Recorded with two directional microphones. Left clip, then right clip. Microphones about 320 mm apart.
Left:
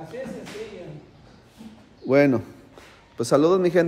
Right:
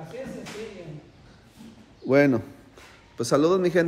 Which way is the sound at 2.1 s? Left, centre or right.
Centre.